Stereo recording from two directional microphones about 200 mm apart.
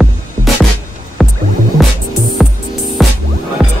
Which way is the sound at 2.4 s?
Centre (ahead or behind).